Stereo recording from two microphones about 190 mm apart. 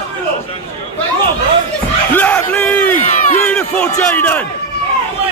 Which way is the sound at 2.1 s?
10° left (ahead or behind).